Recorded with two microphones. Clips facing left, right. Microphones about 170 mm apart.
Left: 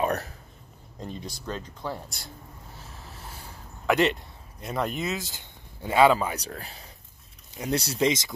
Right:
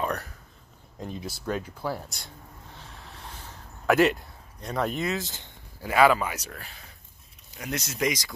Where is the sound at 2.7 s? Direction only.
5° left (ahead or behind).